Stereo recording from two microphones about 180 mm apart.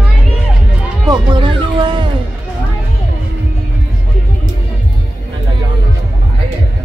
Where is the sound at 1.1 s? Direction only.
25° right (ahead or behind).